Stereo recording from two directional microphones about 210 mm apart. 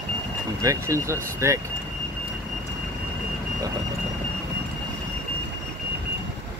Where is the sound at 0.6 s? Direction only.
15° right (ahead or behind).